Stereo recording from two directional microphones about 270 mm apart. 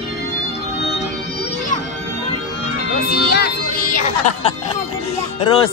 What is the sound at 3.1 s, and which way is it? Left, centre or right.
Music, left.